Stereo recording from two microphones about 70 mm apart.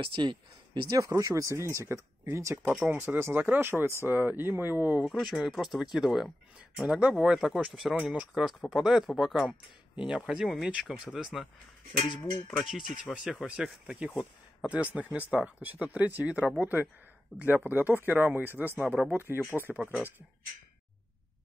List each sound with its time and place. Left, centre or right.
0.2 s speech: right
0.9 s speech: right
5.0 s speech: centre
6.9 s speech: centre
10.0 s speech: centre
12.1 s a sound: left
12.6 s speech: centre; by 19.8 s right
19.8 s speech: centre